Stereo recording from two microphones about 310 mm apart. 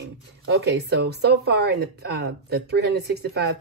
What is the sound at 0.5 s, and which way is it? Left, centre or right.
Speech, right.